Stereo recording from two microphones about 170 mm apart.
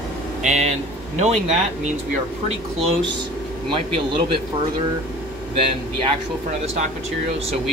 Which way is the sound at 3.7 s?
30° right (ahead or behind).